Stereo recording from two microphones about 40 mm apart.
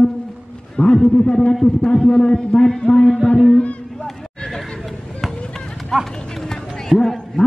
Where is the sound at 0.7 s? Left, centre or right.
Left.